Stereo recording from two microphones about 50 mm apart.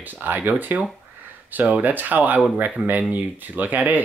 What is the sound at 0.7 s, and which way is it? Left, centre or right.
Speech, right.